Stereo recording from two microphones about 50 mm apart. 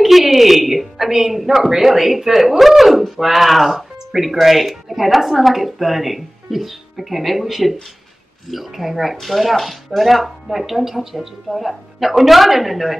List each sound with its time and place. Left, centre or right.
0.0 s a woman's voice: centre